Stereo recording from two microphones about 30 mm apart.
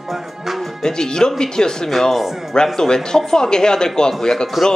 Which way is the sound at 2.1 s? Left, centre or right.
Centre.